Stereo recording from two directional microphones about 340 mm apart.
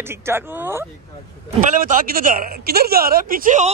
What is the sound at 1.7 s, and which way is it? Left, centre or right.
A woman's voice, right.